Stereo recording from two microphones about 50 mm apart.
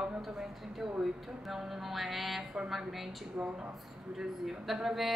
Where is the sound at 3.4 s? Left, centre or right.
Right.